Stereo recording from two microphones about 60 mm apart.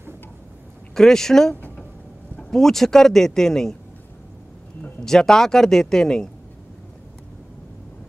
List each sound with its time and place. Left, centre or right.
0.9 s speech: centre
5.0 s speech: centre